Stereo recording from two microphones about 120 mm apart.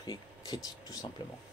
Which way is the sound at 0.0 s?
40° left (ahead or behind).